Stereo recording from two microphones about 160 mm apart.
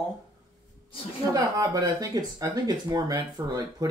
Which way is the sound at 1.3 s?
25° right (ahead or behind).